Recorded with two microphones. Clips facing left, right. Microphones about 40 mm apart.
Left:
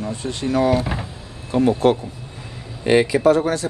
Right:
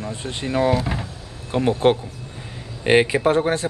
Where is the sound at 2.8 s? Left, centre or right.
Right.